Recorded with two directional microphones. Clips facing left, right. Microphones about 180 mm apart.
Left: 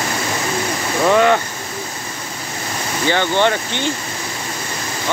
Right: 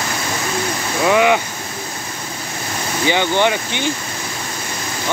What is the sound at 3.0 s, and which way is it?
Speech, 15° right (ahead or behind).